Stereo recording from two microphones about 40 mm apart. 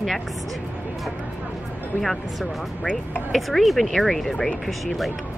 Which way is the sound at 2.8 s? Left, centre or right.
Left.